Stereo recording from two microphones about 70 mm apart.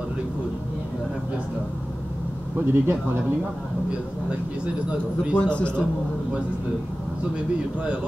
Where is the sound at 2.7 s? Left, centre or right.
Right.